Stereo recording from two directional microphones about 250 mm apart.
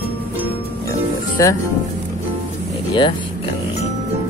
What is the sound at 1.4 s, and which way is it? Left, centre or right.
Speech, centre.